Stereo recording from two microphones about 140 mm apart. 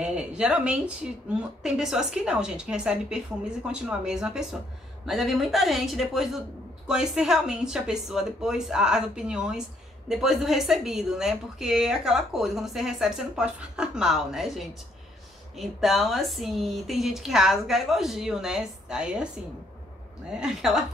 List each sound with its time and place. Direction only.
0.0 s speech: 5° right (ahead or behind)
20.3 s speech: 5° right (ahead or behind)